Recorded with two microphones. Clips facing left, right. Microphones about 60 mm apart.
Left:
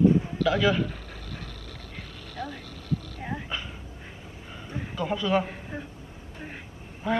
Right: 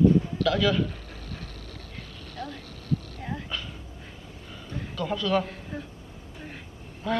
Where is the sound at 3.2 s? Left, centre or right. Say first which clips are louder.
Left 1 dB; centre.